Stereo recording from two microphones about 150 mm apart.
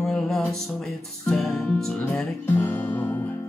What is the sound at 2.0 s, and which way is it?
Guitar, 15° left (ahead or behind).